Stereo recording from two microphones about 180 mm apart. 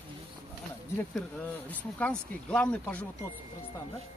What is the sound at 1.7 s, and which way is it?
Speech, 10° left (ahead or behind).